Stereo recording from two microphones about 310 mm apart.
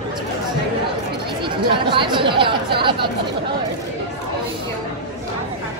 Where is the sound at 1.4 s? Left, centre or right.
Centre.